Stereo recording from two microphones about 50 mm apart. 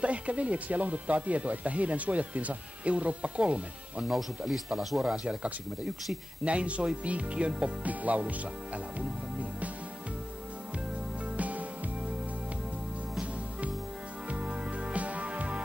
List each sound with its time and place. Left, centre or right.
0.0 s speech: right
4.5 s speech: centre; by 9.7 s right
11.3 s music: right
14.3 s music: right